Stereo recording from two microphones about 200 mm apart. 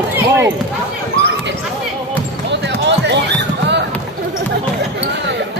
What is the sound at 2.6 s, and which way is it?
Basketball bounce, 60° right (ahead or behind).